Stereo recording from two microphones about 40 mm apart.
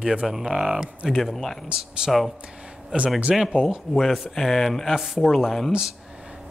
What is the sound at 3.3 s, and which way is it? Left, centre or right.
Speech, centre.